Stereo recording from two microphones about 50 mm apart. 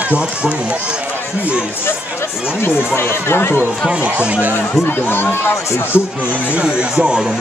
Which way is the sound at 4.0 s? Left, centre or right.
Right.